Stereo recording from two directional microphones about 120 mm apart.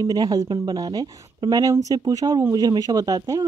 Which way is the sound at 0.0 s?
30° right (ahead or behind).